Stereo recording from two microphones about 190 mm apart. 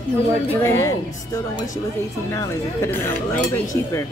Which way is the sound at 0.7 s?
15° left (ahead or behind).